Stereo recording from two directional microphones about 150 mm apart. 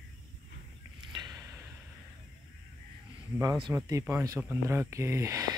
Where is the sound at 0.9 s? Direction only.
25° right (ahead or behind).